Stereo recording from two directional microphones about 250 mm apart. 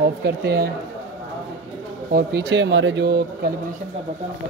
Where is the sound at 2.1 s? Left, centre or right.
Right.